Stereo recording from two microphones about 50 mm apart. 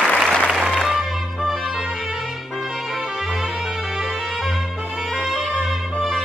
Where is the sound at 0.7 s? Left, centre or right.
Centre.